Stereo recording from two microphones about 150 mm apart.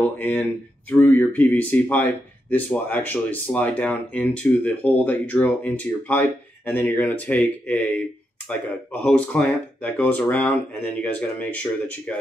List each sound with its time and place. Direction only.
0.0 s speech: 10° left (ahead or behind)
9.0 s speech: 10° left (ahead or behind)